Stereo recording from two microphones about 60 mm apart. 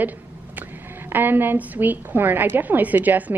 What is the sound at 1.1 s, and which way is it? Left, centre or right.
A woman's voice, right.